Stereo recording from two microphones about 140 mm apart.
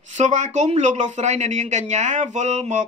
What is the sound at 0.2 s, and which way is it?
Speech, 60° right (ahead or behind).